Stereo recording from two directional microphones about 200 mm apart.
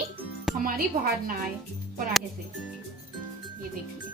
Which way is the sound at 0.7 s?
50° right (ahead or behind).